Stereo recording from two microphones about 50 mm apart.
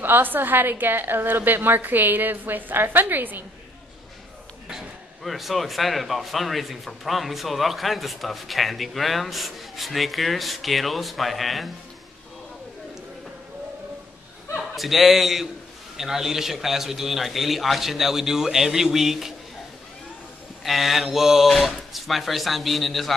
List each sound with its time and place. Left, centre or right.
0.0 s a woman's voice: right
5.2 s a man's voice: centre
14.8 s a man's voice: centre
20.6 s a man's voice: centre